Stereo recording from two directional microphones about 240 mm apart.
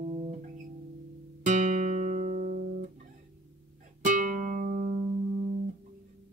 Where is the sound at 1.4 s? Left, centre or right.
Right.